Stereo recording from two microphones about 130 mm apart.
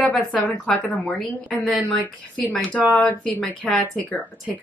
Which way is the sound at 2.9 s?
10° left (ahead or behind).